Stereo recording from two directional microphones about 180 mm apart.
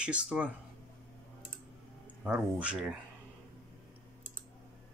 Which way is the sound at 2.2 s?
5° right (ahead or behind).